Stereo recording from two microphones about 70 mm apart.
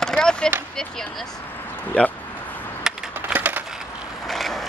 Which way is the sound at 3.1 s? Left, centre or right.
Right.